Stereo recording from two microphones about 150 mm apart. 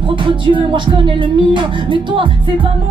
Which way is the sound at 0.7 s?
35° right (ahead or behind).